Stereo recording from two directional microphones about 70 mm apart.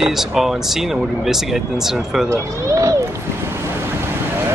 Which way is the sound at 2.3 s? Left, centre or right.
Right.